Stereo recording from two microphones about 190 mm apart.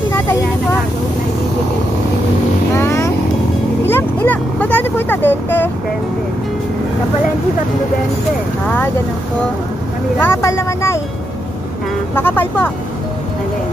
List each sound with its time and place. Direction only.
2.7 s vehicle: 15° left (ahead or behind)
3.9 s speech: 10° left (ahead or behind)
8.6 s speech: 10° left (ahead or behind)
10.1 s speech: 10° left (ahead or behind)
12.2 s speech: 10° left (ahead or behind)